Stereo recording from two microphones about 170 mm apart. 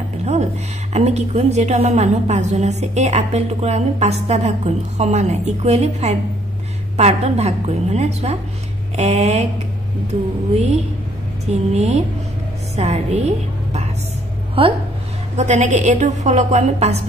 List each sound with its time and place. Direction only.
0.2 s a woman's voice: 40° right (ahead or behind)
11.7 s a woman's voice: 40° right (ahead or behind)
14.6 s a woman's voice: 30° right (ahead or behind)
15.3 s a woman's voice: 45° right (ahead or behind)